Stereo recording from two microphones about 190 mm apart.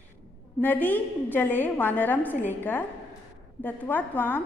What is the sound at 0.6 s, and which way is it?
A woman's voice, 10° left (ahead or behind).